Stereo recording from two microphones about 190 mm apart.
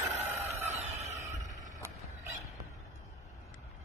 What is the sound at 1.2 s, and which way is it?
Fowl, 15° right (ahead or behind).